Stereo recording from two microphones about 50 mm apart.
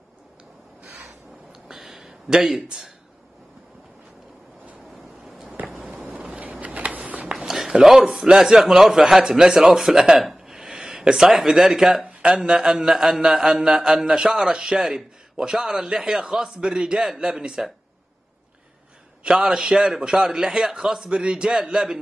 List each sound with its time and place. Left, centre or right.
1.5 s a sound: centre
5.6 s a sound: right
5.9 s vehicle: centre
6.6 s shuffling cards: right
7.3 s a man's voice: centre
12.0 s mantra: right
19.3 s mantra: centre